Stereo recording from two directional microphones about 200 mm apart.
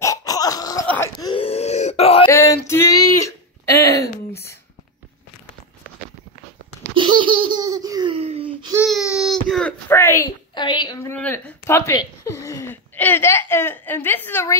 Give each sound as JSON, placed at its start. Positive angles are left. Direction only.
{"t": 0.0, "sound": "throat clearing", "side_deg": 15}
{"t": 0.8, "sound": "groan", "side_deg": 10}
{"t": 1.1, "sound": "wail", "side_deg": 25}
{"t": 2.2, "sound": "a sound", "side_deg": 15}
{"t": 7.0, "sound": "laughter", "side_deg": -25}
{"t": 8.8, "sound": "baby cry", "side_deg": 0}